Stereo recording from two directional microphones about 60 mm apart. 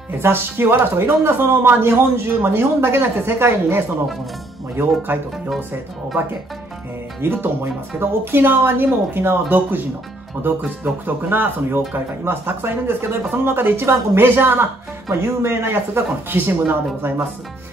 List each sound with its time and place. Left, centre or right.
0.2 s speech: right
4.7 s speech: right
7.2 s speech: right